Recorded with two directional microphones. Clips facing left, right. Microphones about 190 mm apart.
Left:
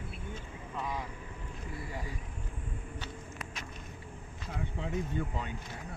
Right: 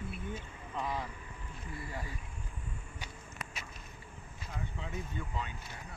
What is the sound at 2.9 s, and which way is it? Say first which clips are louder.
Walk: left 4 dB; 10° right (ahead or behind).